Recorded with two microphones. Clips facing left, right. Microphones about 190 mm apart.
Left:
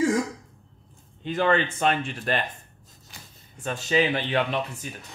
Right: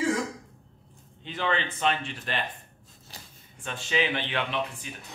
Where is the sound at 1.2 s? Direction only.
45° left (ahead or behind).